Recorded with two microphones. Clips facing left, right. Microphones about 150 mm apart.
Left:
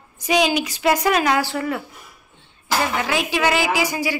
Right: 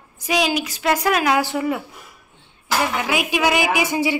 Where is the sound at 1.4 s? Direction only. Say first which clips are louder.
Right 2 dB; 15° right (ahead or behind).